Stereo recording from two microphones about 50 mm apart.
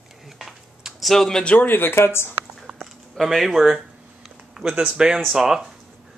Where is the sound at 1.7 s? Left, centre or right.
Left.